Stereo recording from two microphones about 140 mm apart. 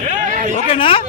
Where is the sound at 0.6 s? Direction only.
40° left (ahead or behind).